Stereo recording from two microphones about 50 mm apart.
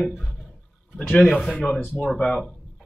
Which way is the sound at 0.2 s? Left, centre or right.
Centre.